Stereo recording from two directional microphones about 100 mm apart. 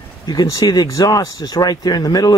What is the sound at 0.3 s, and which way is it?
Speech, 40° left (ahead or behind).